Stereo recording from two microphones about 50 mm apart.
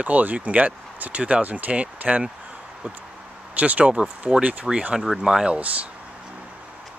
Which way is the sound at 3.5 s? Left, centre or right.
Right.